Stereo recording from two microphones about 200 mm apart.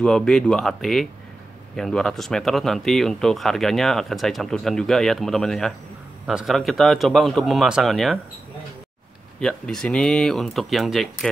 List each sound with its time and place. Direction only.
0.0 s speech: 5° left (ahead or behind)
9.4 s speech: 5° left (ahead or behind)